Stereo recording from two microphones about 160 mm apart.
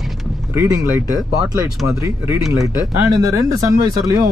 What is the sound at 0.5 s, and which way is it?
Speech, 20° right (ahead or behind).